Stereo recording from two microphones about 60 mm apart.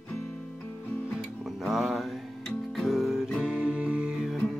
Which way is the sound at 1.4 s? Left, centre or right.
Centre.